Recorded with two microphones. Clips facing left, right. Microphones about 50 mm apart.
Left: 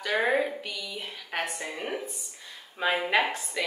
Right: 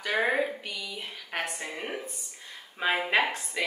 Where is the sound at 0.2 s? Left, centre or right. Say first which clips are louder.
Even; centre.